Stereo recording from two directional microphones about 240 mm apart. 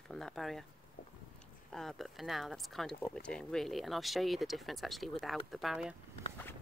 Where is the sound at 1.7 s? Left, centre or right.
Centre.